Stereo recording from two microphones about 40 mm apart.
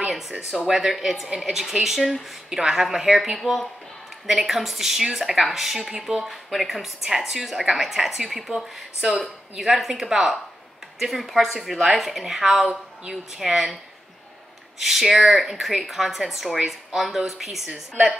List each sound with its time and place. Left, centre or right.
0.7 s a woman's voice: centre
14.8 s a woman's voice: centre